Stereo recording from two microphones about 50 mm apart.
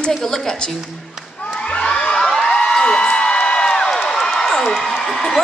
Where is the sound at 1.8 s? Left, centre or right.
Centre.